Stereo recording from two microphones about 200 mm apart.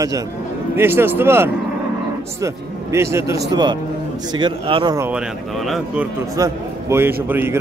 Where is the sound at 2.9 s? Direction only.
15° right (ahead or behind).